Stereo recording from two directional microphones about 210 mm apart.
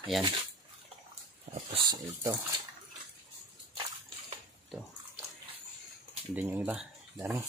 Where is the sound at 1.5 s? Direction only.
25° right (ahead or behind).